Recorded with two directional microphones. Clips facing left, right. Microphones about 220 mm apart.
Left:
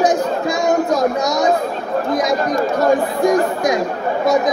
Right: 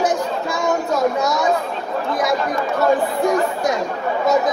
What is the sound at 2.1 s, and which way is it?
Speech, 40° left (ahead or behind).